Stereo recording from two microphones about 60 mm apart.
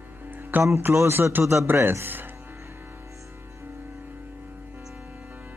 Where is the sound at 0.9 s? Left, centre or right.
Right.